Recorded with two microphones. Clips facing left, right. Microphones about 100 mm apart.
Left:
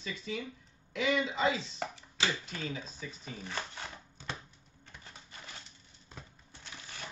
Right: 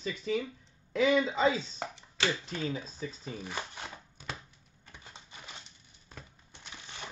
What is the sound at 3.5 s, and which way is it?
Speech, 10° right (ahead or behind).